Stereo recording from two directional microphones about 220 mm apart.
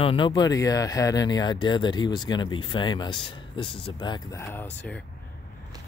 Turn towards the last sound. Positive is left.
turn(degrees=5)  # may be behind; listen again after turning